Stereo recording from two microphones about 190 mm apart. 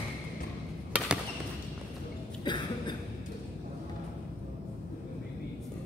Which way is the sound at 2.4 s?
25° left (ahead or behind).